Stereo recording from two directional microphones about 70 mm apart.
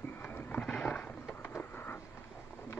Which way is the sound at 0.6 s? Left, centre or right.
Centre.